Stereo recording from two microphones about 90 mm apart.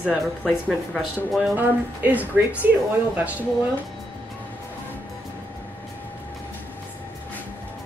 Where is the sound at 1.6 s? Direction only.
20° right (ahead or behind).